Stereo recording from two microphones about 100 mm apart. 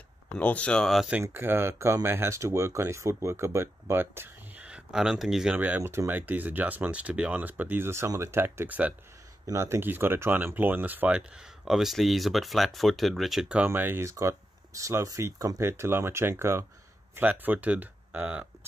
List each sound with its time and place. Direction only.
0.3 s speech: 15° left (ahead or behind)
1.2 s speech: 20° right (ahead or behind)
4.6 s speech: 10° right (ahead or behind)
5.6 s speech: 15° right (ahead or behind)
9.5 s speech: 30° right (ahead or behind)
11.6 s speech: 5° right (ahead or behind)
13.7 s speech: 20° right (ahead or behind)